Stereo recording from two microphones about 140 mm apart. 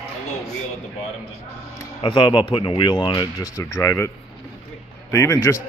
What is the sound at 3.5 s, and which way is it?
Speech, 20° left (ahead or behind).